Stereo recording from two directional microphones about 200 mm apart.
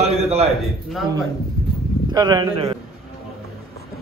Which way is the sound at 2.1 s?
20° right (ahead or behind).